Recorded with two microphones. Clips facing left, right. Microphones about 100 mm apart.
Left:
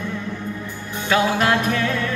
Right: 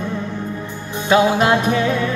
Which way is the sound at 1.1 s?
20° right (ahead or behind).